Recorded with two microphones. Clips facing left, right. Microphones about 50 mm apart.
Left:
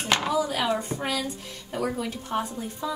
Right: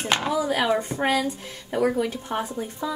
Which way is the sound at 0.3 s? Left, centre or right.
Right.